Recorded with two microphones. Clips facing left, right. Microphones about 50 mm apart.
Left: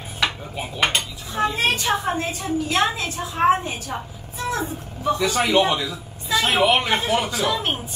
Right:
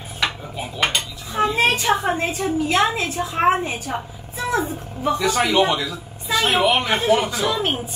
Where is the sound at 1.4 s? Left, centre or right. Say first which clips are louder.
Right 2 dB; right.